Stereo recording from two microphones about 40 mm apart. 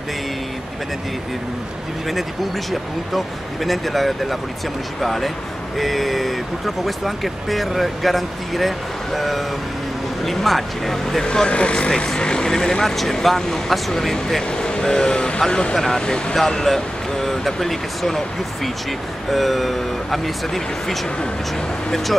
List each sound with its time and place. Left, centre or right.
2.7 s speech: centre
11.3 s speech: left; by 14.4 s centre
14.5 s speech: centre